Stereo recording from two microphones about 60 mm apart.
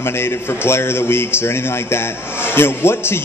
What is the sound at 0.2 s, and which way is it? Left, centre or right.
A man's voice, left.